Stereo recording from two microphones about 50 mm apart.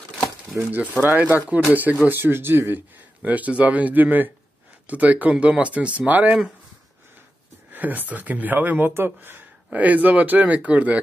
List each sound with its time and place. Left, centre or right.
0.5 s speech: right
2.0 s speech: right
3.3 s speech: right
7.7 s speech: right
8.9 s speech: right
9.7 s speech: right